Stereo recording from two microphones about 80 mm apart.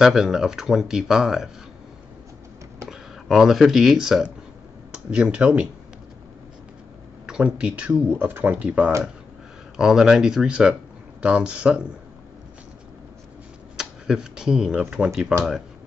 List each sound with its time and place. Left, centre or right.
0.0 s speech: centre
2.9 s speech: centre
7.2 s speech: centre
8.1 s speech: right
13.7 s speech: centre